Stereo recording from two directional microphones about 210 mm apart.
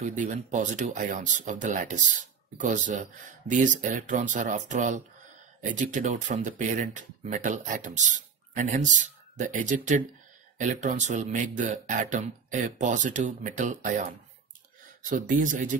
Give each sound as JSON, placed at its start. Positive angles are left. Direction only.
{"t": 0.0, "sound": "speech", "side_deg": -35}